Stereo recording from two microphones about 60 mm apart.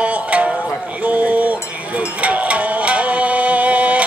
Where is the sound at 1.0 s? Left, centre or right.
Right.